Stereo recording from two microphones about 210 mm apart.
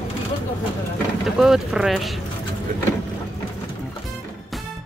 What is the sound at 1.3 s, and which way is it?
Speech, centre (ahead or behind).